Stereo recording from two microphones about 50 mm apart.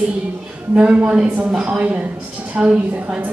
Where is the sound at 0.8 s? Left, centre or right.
Right.